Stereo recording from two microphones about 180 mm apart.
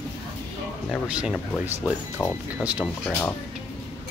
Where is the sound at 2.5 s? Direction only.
5° right (ahead or behind).